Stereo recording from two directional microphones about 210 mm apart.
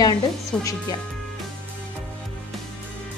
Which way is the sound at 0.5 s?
5° left (ahead or behind).